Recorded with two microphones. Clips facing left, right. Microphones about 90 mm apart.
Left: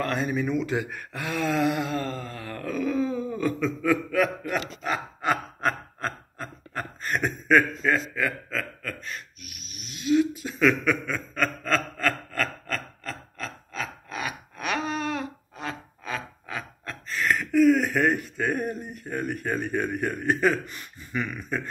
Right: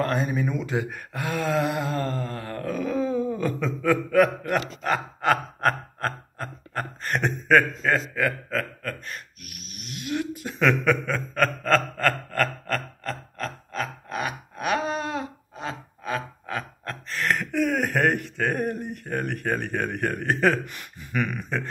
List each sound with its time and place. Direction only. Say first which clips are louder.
0.0 s a sound: right 2 dB; 40° right (ahead or behind)
16.4 s gasp: right 4 dB; 55° right (ahead or behind)
18.0 s speech: right 1 dB; 70° right (ahead or behind)
18.6 s speech: right 3 dB; 60° right (ahead or behind)